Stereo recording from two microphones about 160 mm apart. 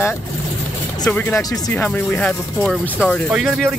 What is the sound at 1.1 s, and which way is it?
Speech, 10° left (ahead or behind).